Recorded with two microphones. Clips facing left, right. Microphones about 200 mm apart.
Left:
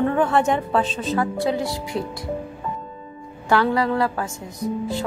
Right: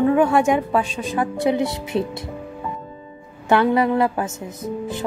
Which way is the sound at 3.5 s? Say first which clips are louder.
Right 3 dB; 20° right (ahead or behind).